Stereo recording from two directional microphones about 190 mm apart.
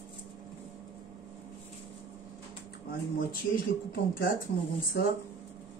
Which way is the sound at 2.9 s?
50° left (ahead or behind).